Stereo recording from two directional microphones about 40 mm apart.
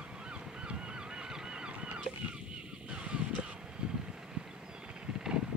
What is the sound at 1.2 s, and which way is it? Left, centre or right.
Goose, centre.